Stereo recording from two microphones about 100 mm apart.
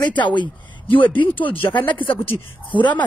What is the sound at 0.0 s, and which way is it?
A woman's voice, 50° left (ahead or behind).